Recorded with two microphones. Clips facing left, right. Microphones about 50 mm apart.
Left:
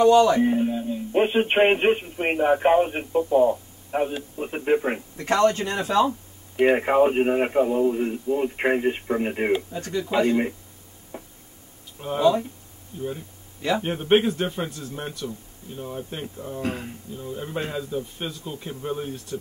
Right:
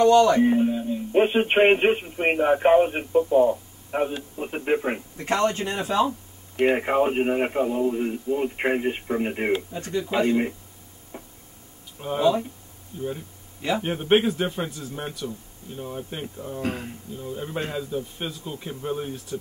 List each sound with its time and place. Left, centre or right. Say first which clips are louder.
0.0 s a man's voice: even; centre
5.1 s a man's voice: left 4 dB; centre
6.5 s a man's voice: left 2 dB; centre
9.8 s a man's voice: left 1 dB; centre
11.1 s a sound: left 2 dB; centre
12.0 s a man's voice: left 1 dB; centre